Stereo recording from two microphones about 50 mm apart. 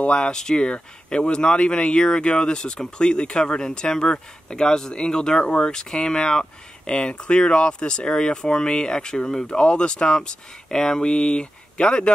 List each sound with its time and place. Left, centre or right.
0.0 s speech: centre